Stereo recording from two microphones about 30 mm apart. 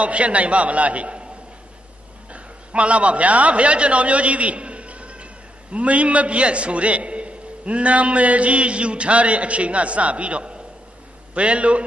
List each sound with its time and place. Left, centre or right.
0.0 s a man's voice: right
2.3 s a man's voice: right